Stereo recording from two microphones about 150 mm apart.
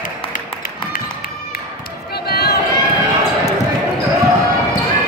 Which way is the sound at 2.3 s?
90° left.